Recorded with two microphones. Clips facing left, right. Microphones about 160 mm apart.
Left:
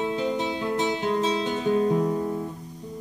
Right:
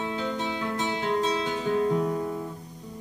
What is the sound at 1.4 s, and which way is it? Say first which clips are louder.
Guitar: left 3 dB; 20° left (ahead or behind).